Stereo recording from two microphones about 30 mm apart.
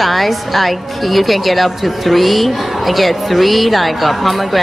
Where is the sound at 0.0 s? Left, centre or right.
Centre.